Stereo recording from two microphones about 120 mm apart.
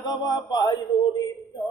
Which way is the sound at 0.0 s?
35° left (ahead or behind).